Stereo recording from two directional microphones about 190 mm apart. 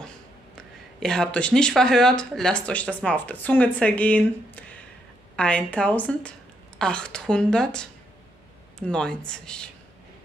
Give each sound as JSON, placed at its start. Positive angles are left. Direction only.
{"t": 0.6, "sound": "a woman's voice", "side_deg": 5}